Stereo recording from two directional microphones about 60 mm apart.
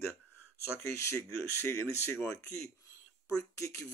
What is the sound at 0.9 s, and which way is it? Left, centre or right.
Speech, left.